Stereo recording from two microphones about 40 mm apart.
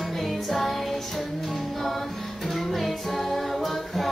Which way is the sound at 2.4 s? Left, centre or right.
Centre.